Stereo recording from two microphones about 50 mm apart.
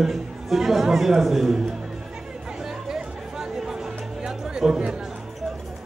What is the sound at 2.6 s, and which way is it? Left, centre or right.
Music, centre.